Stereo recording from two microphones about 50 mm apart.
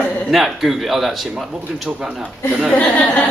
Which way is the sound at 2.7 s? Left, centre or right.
Left.